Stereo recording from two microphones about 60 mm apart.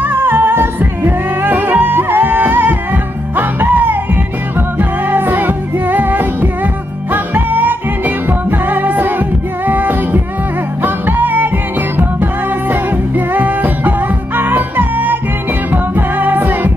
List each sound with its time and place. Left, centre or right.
0.0 s music: right